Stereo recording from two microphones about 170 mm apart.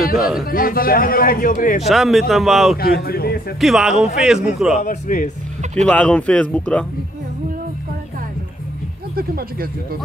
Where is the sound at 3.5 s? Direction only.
Centre (ahead or behind).